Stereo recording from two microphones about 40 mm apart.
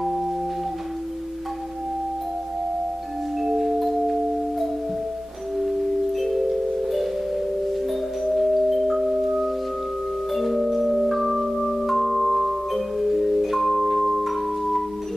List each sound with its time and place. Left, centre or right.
3.3 s music: centre
7.7 s music: centre
10.3 s music: centre